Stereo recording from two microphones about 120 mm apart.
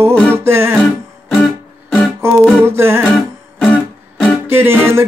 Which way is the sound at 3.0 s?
Centre (ahead or behind).